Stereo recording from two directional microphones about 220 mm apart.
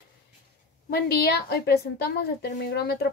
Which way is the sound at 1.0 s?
45° left (ahead or behind).